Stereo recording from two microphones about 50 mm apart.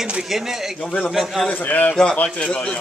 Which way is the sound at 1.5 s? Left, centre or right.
Left.